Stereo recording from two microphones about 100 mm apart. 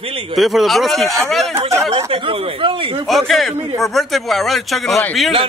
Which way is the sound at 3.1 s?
Centre (ahead or behind).